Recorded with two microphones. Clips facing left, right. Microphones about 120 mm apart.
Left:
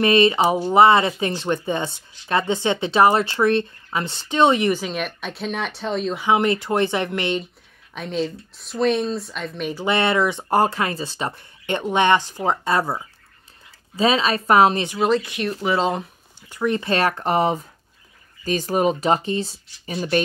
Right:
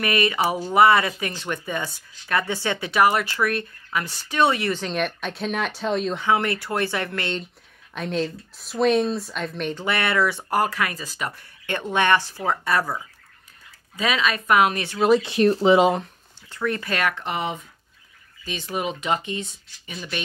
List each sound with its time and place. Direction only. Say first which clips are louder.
0.0 s speech: left 6 dB; 25° left (ahead or behind)
4.7 s speech: right 1 dB; 5° left (ahead or behind)
6.2 s speech: left 7 dB; 20° left (ahead or behind)
7.9 s speech: left 1 dB; centre (ahead or behind)
9.8 s speech: left 4 dB; 25° left (ahead or behind)
15.2 s speech: right 7 dB; 35° right (ahead or behind)
16.4 s speech: left 4 dB; 15° left (ahead or behind); by 20.2 s 40° left (ahead or behind)